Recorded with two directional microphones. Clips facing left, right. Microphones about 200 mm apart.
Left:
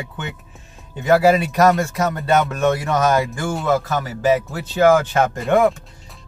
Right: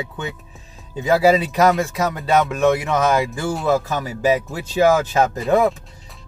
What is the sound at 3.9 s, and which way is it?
Speech, 15° right (ahead or behind).